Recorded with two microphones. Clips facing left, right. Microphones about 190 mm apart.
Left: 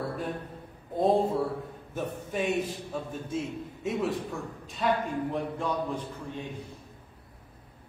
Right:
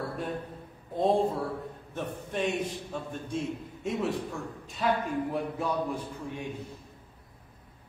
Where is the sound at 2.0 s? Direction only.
5° left (ahead or behind).